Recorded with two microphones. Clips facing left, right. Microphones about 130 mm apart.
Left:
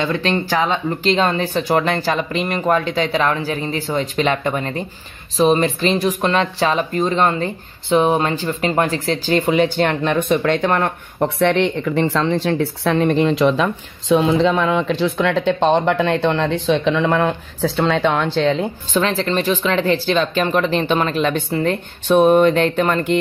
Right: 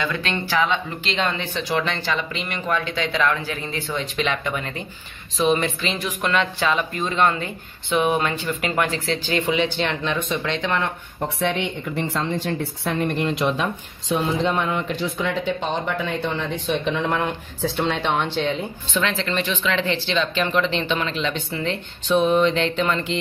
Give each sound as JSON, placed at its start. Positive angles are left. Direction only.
{"t": 0.1, "sound": "speech", "side_deg": 35}
{"t": 11.1, "sound": "speech", "side_deg": 75}
{"t": 18.9, "sound": "speech", "side_deg": 40}